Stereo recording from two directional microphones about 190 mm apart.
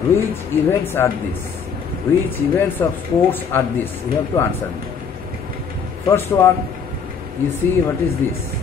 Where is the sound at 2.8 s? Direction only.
15° left (ahead or behind).